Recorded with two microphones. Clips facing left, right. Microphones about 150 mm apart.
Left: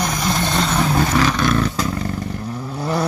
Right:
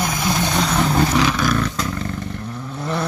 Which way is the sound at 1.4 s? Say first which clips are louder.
Left 2 dB; 5° left (ahead or behind).